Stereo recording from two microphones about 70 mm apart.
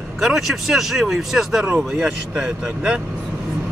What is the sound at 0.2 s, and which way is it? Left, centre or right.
Speech, centre.